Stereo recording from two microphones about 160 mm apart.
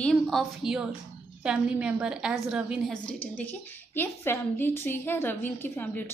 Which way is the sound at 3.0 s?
10° left (ahead or behind).